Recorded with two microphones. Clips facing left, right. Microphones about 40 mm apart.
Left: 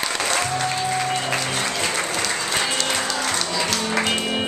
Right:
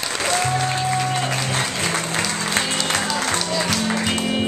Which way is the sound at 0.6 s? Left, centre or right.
Centre.